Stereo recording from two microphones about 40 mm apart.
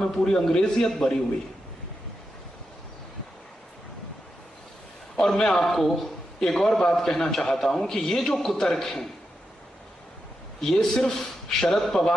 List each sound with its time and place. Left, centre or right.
0.0 s a man's voice: centre
5.1 s a man's voice: centre
5.6 s a man's voice: centre
10.6 s a man's voice: centre